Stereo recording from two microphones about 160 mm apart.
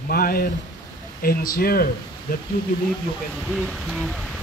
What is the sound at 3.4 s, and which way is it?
Speech, centre (ahead or behind).